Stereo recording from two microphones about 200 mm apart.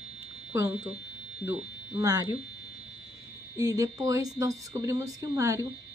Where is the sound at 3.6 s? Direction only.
15° right (ahead or behind).